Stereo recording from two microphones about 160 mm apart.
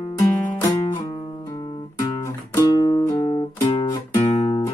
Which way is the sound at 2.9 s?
20° left (ahead or behind).